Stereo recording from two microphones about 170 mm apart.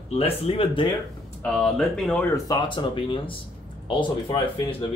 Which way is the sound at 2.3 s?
20° left (ahead or behind).